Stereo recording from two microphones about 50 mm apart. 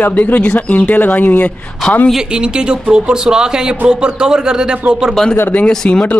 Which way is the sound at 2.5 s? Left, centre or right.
Centre.